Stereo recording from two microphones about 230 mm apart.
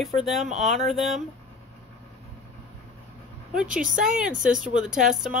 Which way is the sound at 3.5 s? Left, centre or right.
Centre.